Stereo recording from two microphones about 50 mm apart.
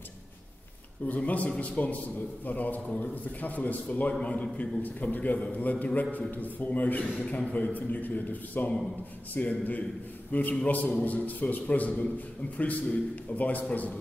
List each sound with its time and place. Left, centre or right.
1.0 s a man's voice: left